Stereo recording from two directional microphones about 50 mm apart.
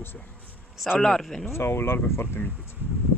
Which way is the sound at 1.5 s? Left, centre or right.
Left.